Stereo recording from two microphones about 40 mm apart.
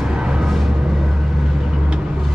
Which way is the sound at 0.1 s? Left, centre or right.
Centre.